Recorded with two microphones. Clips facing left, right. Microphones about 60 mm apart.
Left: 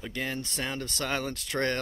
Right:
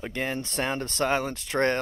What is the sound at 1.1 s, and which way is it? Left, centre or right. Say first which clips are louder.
Speech: right 5 dB; right.